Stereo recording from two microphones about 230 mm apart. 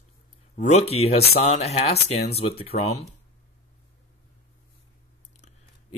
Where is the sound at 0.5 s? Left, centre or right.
Left.